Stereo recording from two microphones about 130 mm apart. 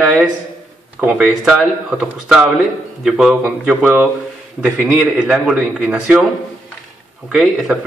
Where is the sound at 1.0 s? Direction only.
5° right (ahead or behind).